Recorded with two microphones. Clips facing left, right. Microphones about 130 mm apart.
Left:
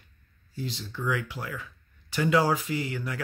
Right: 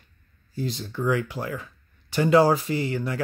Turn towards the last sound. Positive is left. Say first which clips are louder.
# right 5 dB
turn(degrees=-35)  # may be behind; listen again after turning